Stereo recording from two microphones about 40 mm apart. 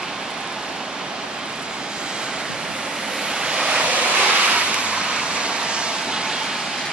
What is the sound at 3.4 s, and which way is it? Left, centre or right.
Waves, centre.